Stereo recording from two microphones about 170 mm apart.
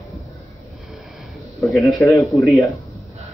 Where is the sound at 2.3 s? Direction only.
Centre (ahead or behind).